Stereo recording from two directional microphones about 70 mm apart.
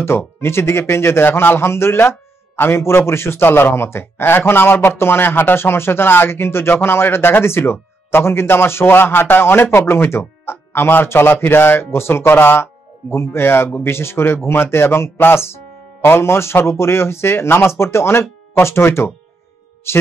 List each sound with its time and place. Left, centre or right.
0.4 s speech: left